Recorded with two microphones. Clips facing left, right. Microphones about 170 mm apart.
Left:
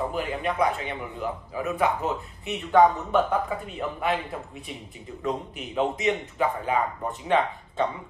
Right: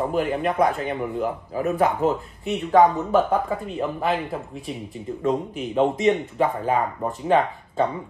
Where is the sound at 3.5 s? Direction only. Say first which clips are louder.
Right 5 dB; 35° right (ahead or behind).